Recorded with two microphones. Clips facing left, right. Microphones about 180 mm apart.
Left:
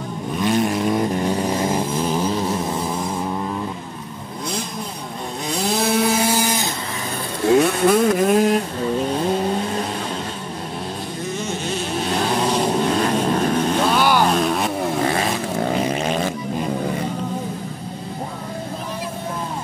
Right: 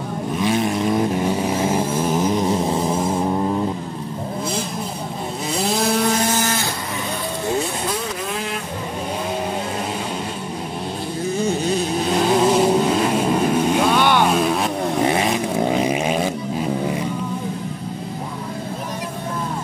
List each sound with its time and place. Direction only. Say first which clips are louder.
0.4 s vehicle: left 1 dB; centre (ahead or behind); by 3.5 s 25° right (ahead or behind)
5.6 s a sound: even; centre (ahead or behind)
7.4 s vehicle: left 10 dB; 70° left (ahead or behind); by 8.5 s 45° left (ahead or behind)
11.3 s vehicle: right 7 dB; 35° right (ahead or behind)
12.2 s vehicle: right 5 dB; 5° right (ahead or behind)
13.9 s vehicle: even; 5° left (ahead or behind)
15.0 s vehicle: right 2 dB; 20° right (ahead or behind)
15.7 s a sound: right 2 dB; 10° right (ahead or behind)